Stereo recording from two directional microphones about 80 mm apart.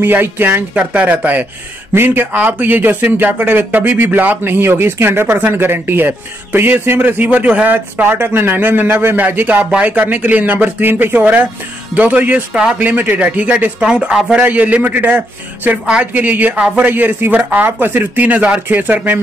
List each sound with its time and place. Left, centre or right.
0.0 s speech: right